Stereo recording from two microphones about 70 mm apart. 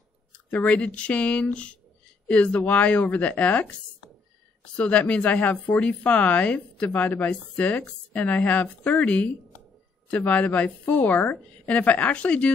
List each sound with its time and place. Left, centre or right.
0.5 s a woman's voice: left
4.7 s a woman's voice: centre